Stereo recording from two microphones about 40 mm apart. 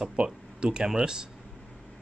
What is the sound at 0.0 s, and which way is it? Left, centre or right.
Speech, right.